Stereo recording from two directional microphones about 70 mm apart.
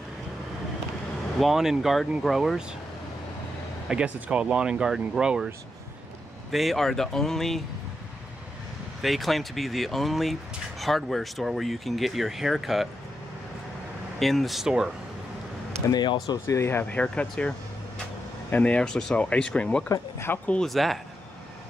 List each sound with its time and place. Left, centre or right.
1.4 s speech: centre
3.9 s speech: centre
6.5 s speech: centre
9.0 s speech: centre
14.2 s speech: centre
15.9 s speech: left
16.4 s speech: left
16.8 s speech: centre
19.9 s speech: left
20.6 s speech: centre